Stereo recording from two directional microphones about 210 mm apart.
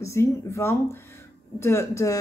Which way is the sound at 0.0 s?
15° left (ahead or behind).